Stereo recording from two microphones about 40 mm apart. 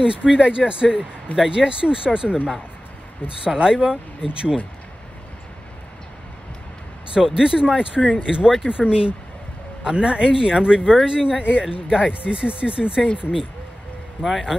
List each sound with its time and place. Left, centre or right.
0.0 s speech: right
7.2 s speech: centre
12.1 s speech: right
14.2 s a man's voice: centre